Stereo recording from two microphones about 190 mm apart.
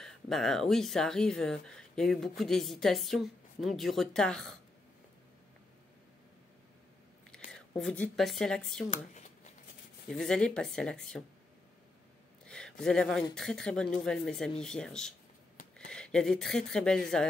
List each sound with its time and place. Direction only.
0.0 s speech: centre (ahead or behind)
7.5 s speech: 5° left (ahead or behind)
8.9 s a sound: 40° left (ahead or behind)
10.1 s speech: 5° left (ahead or behind)
12.4 s speech: 5° left (ahead or behind)